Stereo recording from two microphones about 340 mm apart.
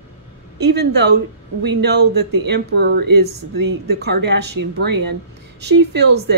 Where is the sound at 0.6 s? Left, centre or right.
Right.